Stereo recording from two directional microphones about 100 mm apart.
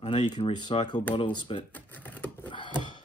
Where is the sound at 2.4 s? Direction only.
55° left (ahead or behind).